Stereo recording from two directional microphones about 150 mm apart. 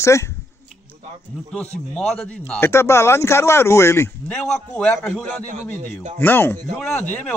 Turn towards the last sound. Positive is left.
turn(degrees=10)  # may be behind; listen again after turning